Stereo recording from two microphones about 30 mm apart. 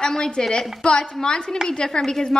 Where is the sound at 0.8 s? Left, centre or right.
Left.